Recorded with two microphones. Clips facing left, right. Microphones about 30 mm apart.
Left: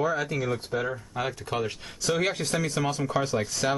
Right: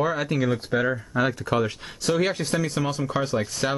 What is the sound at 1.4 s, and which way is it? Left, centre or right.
Speech, right.